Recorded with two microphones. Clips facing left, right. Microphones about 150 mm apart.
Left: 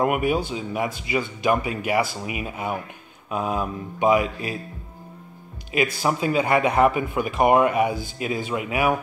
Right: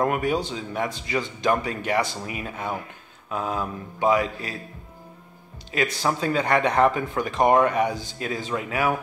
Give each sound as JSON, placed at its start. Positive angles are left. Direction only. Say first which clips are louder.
{"t": 0.0, "sound": "speech", "louder": "left 2 dB", "side_deg": 15}
{"t": 5.7, "sound": "speech", "louder": "left 2 dB", "side_deg": 10}